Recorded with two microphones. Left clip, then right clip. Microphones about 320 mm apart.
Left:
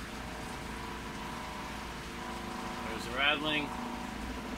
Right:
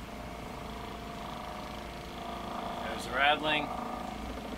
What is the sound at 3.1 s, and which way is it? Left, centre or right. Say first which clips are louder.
Vehicle: right 3 dB; right.